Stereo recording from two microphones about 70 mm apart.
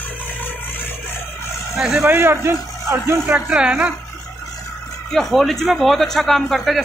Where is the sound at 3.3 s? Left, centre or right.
Centre.